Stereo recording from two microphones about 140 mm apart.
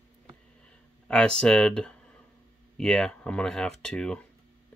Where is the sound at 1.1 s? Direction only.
5° left (ahead or behind).